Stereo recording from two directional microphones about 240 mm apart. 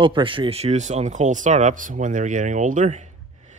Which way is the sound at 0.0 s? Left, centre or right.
Right.